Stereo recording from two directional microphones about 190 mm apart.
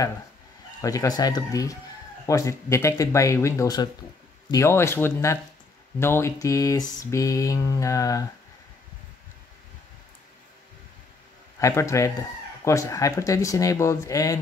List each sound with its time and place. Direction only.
0.7 s speech: 20° left (ahead or behind)
11.6 s speech: 15° left (ahead or behind)